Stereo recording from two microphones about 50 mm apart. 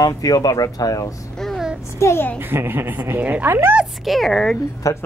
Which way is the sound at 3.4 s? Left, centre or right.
Right.